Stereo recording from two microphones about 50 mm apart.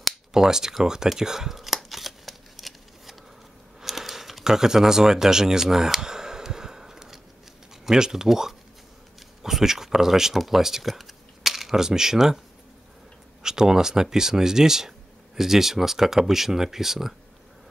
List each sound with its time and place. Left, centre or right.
0.3 s scissors: centre
3.8 s a sound: centre
7.8 s speech: centre
13.4 s speech: centre